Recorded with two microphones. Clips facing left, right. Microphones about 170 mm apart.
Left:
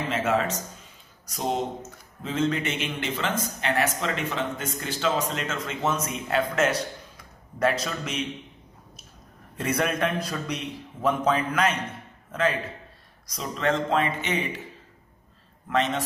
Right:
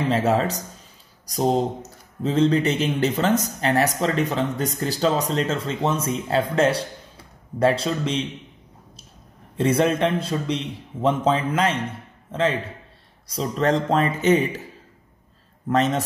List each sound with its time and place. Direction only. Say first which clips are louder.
0.1 s speech: right 3 dB; 35° right (ahead or behind)
9.6 s a man's voice: right 6 dB; 30° right (ahead or behind)
15.7 s speech: right 5 dB; 40° right (ahead or behind)